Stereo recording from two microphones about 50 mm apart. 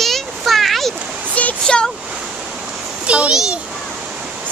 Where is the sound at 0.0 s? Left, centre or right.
Centre.